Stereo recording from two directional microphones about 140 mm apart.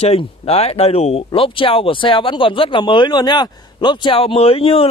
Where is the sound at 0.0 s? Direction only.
45° left (ahead or behind).